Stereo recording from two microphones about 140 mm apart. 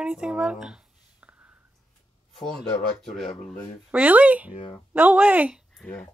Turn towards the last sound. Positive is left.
turn(degrees=10)  # may be behind; listen again after turning